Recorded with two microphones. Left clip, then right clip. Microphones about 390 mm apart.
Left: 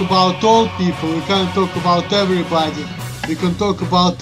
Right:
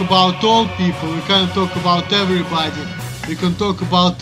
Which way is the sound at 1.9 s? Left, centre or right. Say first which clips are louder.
Even; right.